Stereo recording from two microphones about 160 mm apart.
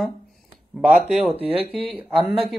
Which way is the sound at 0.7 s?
5° right (ahead or behind).